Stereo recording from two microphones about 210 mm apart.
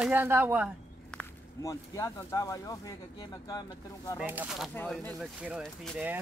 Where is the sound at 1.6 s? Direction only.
15° left (ahead or behind).